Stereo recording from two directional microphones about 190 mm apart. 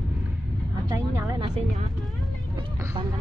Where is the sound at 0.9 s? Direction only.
20° right (ahead or behind).